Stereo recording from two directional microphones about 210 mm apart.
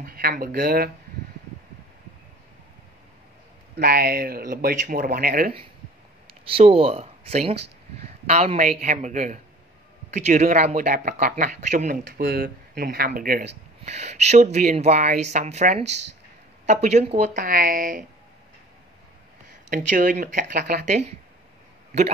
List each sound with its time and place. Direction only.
0.0 s speech: 45° right (ahead or behind)
3.7 s speech: 45° right (ahead or behind)
6.5 s speech: 25° right (ahead or behind); by 13.5 s 45° right (ahead or behind)
13.8 s speech: 30° right (ahead or behind)
19.7 s speech: 40° right (ahead or behind)